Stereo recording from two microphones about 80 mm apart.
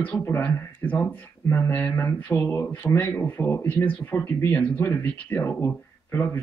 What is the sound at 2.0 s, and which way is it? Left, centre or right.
Speech, left.